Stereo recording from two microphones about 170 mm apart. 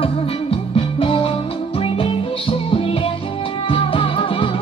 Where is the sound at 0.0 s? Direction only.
30° left (ahead or behind).